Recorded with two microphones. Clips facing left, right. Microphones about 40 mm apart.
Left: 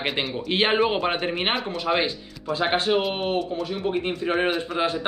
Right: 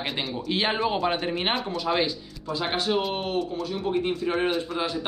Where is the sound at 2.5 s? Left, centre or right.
Left.